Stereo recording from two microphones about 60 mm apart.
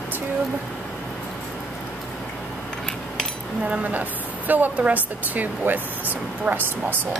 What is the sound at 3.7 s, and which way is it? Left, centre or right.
Speech, right.